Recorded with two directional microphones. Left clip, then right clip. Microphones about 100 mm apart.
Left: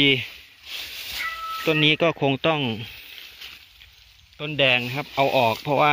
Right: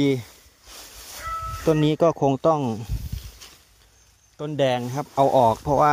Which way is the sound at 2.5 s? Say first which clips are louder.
Even; 25° right (ahead or behind).